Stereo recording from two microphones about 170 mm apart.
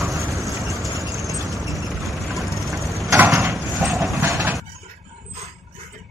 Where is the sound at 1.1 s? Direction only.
Centre (ahead or behind).